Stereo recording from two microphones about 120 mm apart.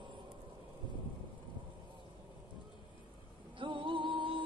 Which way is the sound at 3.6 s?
45° right (ahead or behind).